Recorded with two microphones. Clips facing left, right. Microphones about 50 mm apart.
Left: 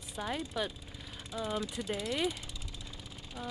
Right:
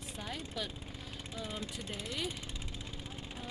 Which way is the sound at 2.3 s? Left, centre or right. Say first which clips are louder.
Right 1 dB; right.